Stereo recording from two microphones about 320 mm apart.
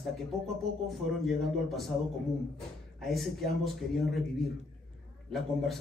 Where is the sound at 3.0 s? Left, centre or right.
Centre.